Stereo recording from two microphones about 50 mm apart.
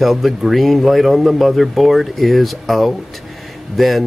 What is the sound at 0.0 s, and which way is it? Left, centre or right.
Speech, centre.